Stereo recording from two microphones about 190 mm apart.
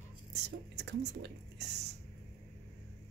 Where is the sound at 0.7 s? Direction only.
60° right (ahead or behind).